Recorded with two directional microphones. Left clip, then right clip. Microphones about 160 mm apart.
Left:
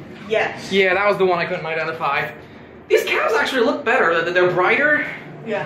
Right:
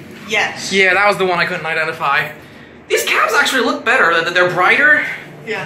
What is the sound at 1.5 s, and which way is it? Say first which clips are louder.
Speech: right 5 dB; 20° right (ahead or behind).